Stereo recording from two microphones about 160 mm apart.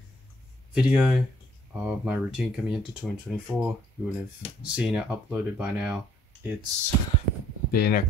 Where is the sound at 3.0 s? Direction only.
5° left (ahead or behind).